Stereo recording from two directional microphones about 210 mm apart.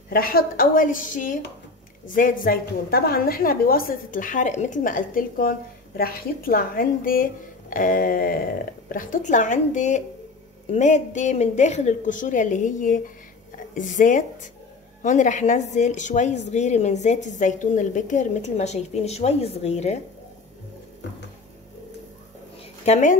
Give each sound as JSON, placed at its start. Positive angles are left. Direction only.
{"t": 0.1, "sound": "a woman's voice", "side_deg": 45}
{"t": 7.7, "sound": "a sound", "side_deg": 40}
{"t": 8.8, "sound": "a woman's voice", "side_deg": 40}
{"t": 22.8, "sound": "a woman's voice", "side_deg": 35}